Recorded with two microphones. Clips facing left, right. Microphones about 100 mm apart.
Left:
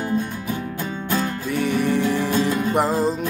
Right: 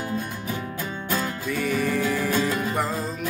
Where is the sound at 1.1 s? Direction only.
20° left (ahead or behind).